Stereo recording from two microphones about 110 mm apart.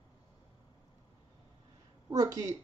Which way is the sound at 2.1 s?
35° right (ahead or behind).